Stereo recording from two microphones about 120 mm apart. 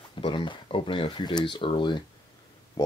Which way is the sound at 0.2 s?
45° left (ahead or behind).